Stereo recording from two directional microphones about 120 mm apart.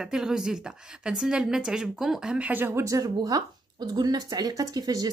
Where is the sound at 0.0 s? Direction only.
5° right (ahead or behind).